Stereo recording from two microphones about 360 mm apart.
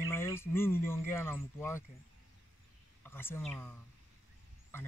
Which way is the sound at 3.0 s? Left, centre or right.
Centre.